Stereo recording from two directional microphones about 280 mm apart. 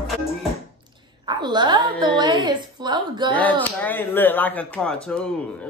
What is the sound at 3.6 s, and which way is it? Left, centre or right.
Music, centre.